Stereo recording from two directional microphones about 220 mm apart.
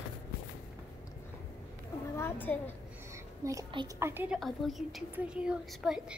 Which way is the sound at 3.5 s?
15° right (ahead or behind).